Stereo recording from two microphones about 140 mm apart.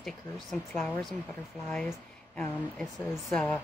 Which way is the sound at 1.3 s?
15° left (ahead or behind).